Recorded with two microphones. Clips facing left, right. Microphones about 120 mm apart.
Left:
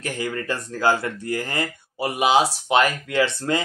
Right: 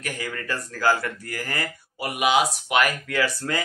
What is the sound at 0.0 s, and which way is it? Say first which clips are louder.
Speech: left 5 dB; 25° left (ahead or behind).